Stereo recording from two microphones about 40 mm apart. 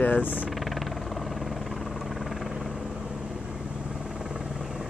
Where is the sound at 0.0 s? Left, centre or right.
Left.